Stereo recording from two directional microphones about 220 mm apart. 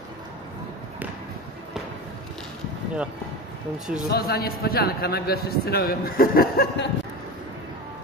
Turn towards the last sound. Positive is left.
turn(degrees=45)  # may be behind; listen again after turning